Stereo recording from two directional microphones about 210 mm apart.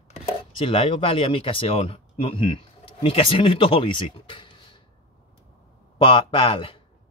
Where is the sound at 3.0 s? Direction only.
25° left (ahead or behind).